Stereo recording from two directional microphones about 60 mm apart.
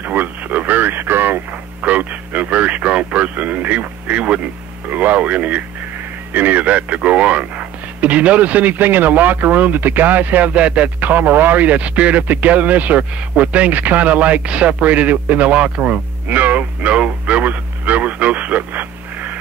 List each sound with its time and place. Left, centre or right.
0.0 s radio: right
1.8 s radio: right
4.8 s speech: right
16.3 s radio: right